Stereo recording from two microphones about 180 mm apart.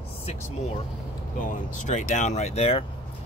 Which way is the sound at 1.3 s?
45° left (ahead or behind).